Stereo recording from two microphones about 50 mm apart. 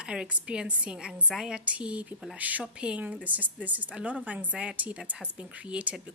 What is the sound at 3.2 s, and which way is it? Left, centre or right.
A woman's voice, right.